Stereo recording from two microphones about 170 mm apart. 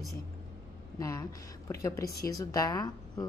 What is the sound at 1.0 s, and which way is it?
A woman's voice, 20° left (ahead or behind).